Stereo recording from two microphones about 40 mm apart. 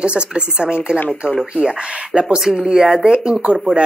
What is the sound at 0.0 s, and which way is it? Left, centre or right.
Speech, right.